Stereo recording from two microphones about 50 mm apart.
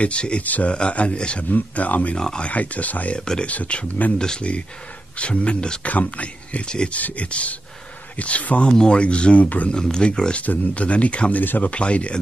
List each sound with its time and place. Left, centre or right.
0.0 s speech: left
2.1 s speech: centre
2.5 s speech: left
9.7 s speech: centre
10.4 s speech: left
11.4 s speech: left
11.7 s speech: left